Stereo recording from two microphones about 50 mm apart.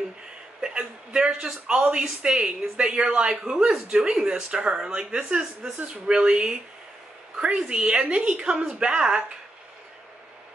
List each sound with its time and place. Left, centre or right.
0.6 s a woman's voice: centre
7.6 s a woman's voice: centre